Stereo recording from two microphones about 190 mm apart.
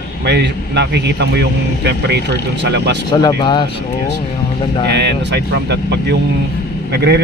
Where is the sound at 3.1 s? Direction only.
20° left (ahead or behind).